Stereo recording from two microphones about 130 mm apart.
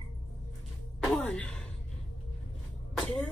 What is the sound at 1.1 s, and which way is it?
Music, 10° left (ahead or behind).